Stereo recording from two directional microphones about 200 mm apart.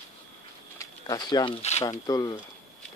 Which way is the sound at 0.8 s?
20° left (ahead or behind).